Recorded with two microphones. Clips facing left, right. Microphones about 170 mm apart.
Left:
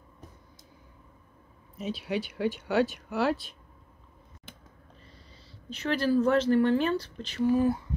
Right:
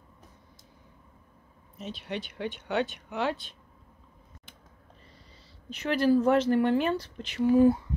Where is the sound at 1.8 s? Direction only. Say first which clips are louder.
Left 5 dB; 5° left (ahead or behind).